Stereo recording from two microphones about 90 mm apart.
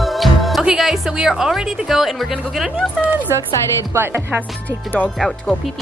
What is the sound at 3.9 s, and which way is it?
Speech, 25° right (ahead or behind).